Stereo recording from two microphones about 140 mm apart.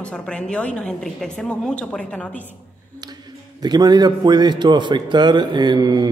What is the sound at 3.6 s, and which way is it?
A man's voice, 30° right (ahead or behind).